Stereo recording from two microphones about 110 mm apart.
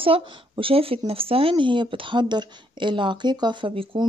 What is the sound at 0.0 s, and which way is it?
Speech, 55° right (ahead or behind).